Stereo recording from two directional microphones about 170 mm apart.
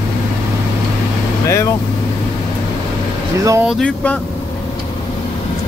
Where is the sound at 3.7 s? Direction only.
5° left (ahead or behind).